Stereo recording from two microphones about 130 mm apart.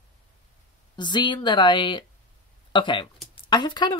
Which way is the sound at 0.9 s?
35° left (ahead or behind).